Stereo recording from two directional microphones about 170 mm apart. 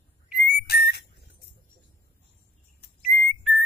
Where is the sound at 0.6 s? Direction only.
70° left (ahead or behind).